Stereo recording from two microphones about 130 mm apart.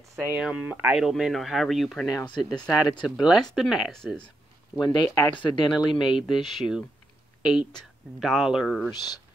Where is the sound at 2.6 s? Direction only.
Centre (ahead or behind).